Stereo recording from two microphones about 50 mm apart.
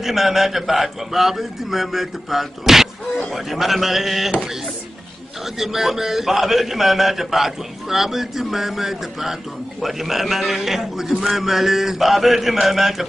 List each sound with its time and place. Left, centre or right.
0.0 s a man's voice: centre
5.6 s a man's voice: centre